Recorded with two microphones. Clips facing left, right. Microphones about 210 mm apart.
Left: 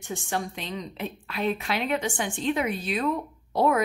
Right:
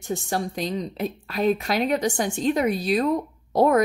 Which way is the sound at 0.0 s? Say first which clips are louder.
Right 4 dB; 35° right (ahead or behind).